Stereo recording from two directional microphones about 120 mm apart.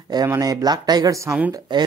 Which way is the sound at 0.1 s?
30° right (ahead or behind).